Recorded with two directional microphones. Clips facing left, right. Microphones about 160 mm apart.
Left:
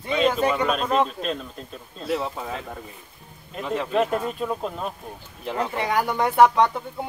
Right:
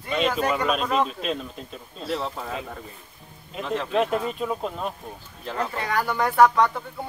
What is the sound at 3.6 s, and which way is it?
Speech, 10° left (ahead or behind).